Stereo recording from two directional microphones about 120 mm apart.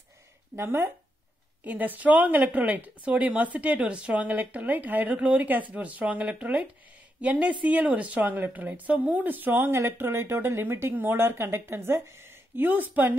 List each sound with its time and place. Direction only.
0.6 s a woman's voice: 20° right (ahead or behind)